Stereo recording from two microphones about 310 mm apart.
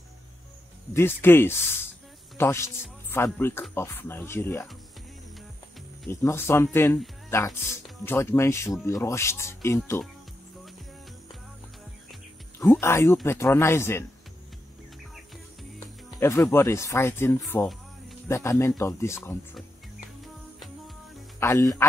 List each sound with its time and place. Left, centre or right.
0.9 s speech: centre
6.0 s speech: centre
12.1 s speech: centre
16.2 s speech: centre
21.4 s speech: centre